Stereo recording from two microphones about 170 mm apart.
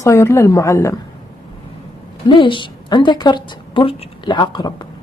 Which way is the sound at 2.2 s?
30° left (ahead or behind).